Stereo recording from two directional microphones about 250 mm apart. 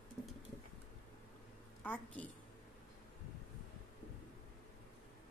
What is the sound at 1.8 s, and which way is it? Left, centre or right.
Speech, centre.